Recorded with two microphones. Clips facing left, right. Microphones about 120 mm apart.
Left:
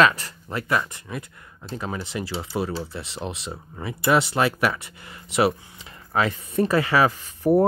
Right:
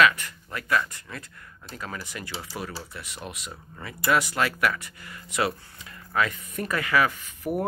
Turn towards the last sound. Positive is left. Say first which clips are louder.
# left 10 dB
turn(degrees=35)  # may be behind; listen again after turning